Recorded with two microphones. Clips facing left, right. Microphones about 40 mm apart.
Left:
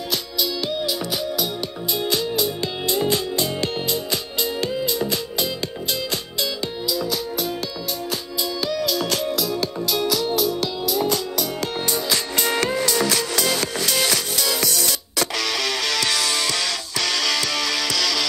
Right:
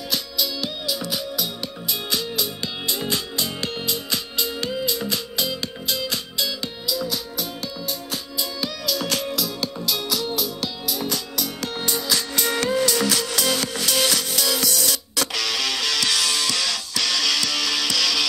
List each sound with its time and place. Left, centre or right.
0.6 s music: left
8.8 s music: left
9.8 s music: centre
10.3 s music: left
11.0 s music: left